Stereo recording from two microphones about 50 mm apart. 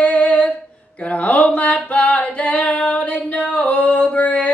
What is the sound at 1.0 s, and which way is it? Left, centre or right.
Singing, left.